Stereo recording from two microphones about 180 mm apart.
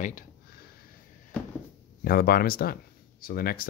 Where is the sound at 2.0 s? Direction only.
55° left (ahead or behind).